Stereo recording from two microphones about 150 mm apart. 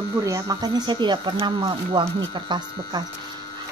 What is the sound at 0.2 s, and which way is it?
Speech, 25° right (ahead or behind).